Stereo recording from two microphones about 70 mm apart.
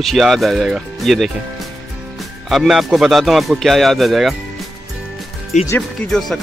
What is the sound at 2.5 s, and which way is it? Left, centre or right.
Speech, centre.